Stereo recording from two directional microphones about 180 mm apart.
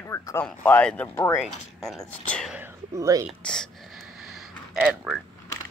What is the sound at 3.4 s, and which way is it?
Speech, 5° left (ahead or behind).